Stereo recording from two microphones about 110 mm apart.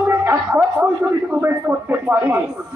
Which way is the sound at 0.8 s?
10° right (ahead or behind).